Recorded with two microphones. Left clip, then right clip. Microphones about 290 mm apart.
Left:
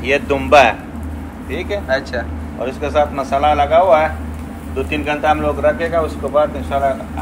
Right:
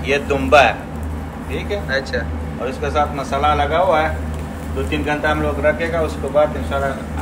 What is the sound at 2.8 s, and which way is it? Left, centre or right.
A man's voice, left.